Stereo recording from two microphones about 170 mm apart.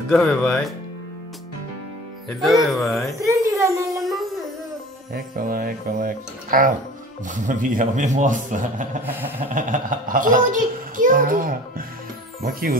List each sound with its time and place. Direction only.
0.1 s speech: 5° left (ahead or behind)
2.4 s speech: centre (ahead or behind)
3.3 s a sound: 15° right (ahead or behind)
5.1 s a child's voice: 55° right (ahead or behind)
9.0 s a sound: 10° right (ahead or behind)
9.5 s a child's voice: 50° right (ahead or behind)